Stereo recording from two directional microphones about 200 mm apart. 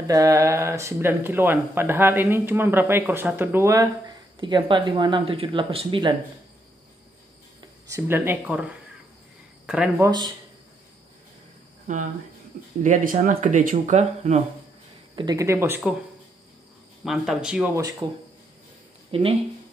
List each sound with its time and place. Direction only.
0.0 s speech: 15° right (ahead or behind)
7.9 s speech: 10° right (ahead or behind)
11.9 s speech: 40° right (ahead or behind)
15.1 s speech: 20° right (ahead or behind)
17.0 s speech: centre (ahead or behind)
18.0 s speech: 15° right (ahead or behind)
19.1 s speech: 30° right (ahead or behind)